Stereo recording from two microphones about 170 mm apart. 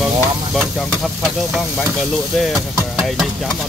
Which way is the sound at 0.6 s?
Centre (ahead or behind).